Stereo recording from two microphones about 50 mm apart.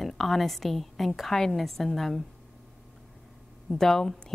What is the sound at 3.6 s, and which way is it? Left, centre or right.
Speech, centre.